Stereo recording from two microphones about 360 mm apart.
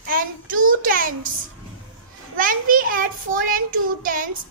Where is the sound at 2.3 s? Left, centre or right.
Right.